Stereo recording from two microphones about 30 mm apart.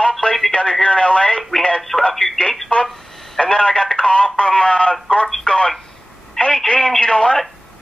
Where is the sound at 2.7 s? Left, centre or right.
Left.